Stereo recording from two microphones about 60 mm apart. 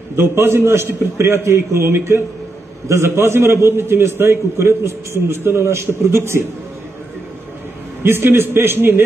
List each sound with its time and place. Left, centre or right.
0.1 s a man's voice: right
8.0 s a man's voice: right